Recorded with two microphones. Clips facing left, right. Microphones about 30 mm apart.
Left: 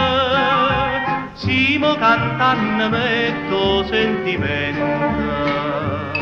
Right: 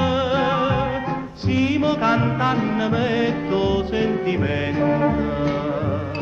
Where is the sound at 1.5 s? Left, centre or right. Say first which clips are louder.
Left 3 dB; left.